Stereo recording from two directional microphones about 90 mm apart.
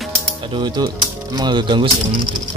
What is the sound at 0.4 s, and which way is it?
Speech, 60° right (ahead or behind).